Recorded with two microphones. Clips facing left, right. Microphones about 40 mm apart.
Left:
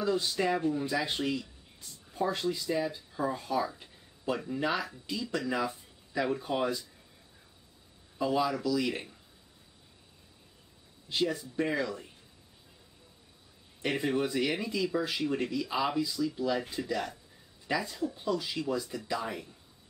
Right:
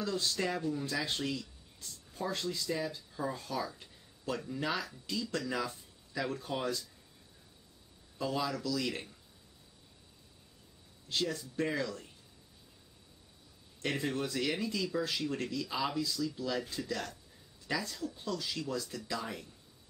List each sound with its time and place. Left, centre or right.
0.0 s speech: centre
8.2 s speech: centre
11.1 s speech: centre
13.7 s speech: centre